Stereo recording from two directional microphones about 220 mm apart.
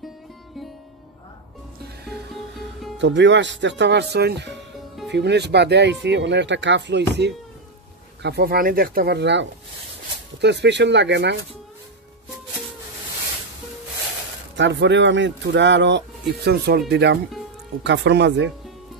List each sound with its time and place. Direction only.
2.3 s music: centre (ahead or behind)
3.0 s speech: 55° right (ahead or behind)
14.6 s speech: 55° right (ahead or behind)